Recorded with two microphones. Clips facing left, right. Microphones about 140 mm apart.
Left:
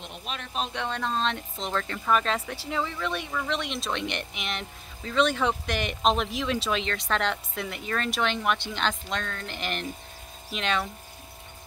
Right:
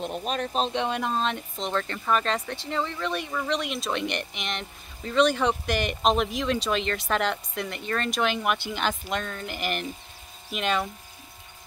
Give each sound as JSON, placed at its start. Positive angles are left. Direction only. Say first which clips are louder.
{"t": 0.0, "sound": "speech", "louder": "right 9 dB", "side_deg": -40}
{"t": 0.7, "sound": "speech", "louder": "right 3 dB", "side_deg": -15}